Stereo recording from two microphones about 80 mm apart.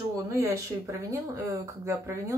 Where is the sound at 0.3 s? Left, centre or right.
Right.